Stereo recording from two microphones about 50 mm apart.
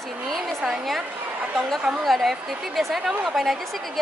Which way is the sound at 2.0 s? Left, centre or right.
Centre.